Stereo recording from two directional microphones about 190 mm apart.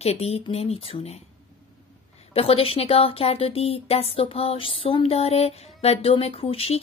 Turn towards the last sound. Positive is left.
turn(degrees=30)  # may be behind; listen again after turning